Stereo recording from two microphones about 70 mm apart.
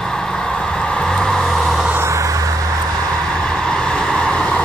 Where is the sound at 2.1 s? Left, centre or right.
Right.